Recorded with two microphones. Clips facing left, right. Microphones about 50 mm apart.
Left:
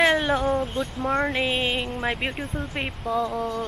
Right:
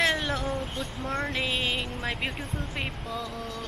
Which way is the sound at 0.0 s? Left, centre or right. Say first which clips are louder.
Left 6 dB; left.